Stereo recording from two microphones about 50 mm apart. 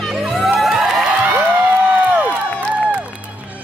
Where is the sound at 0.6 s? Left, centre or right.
Centre.